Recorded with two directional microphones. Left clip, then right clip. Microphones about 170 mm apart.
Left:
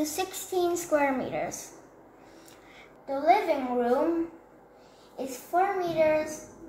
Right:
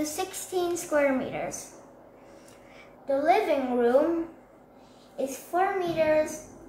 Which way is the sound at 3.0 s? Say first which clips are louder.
Even; 10° left (ahead or behind).